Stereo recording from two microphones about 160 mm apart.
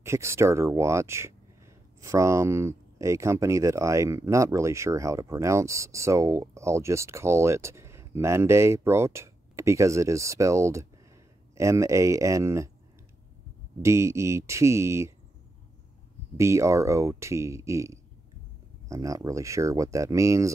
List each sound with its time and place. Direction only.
0.0 s speech: 15° right (ahead or behind)
13.8 s speech: 20° right (ahead or behind)
16.3 s speech: 20° right (ahead or behind)